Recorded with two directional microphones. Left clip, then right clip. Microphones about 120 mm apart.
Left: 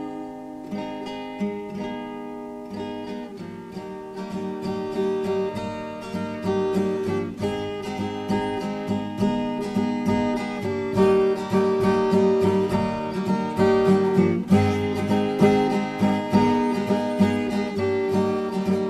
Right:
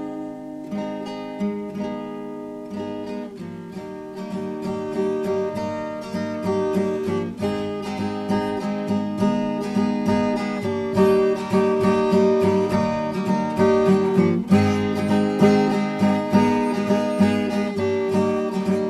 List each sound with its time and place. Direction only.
4.6 s music: 45° right (ahead or behind)